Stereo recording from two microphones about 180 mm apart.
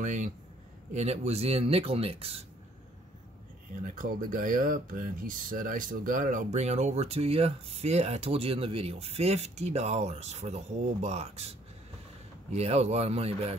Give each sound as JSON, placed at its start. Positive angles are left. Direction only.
{"t": 0.0, "sound": "speech", "side_deg": -45}
{"t": 3.8, "sound": "speech", "side_deg": -50}